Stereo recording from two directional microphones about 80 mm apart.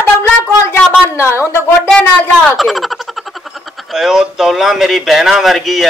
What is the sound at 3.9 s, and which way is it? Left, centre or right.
Speech, centre.